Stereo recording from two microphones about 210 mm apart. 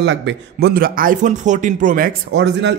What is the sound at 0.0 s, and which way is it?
Speech, 55° right (ahead or behind).